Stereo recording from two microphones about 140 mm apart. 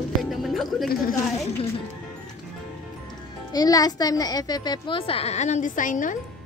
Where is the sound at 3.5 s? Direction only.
25° left (ahead or behind).